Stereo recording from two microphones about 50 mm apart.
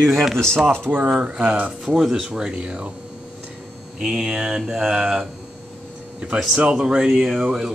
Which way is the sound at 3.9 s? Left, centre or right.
Centre.